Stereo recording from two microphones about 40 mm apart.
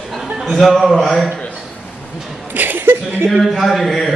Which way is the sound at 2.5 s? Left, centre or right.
Right.